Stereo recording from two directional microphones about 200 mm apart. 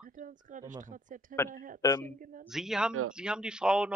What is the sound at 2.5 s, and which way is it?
Speech, centre (ahead or behind).